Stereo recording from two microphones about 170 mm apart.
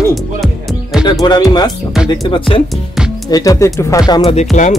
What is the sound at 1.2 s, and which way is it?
Speech, 25° left (ahead or behind).